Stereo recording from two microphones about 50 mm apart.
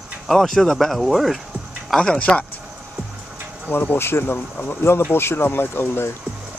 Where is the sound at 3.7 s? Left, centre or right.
Left.